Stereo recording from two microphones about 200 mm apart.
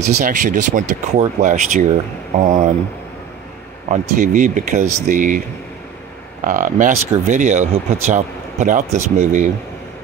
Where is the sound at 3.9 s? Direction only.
40° right (ahead or behind).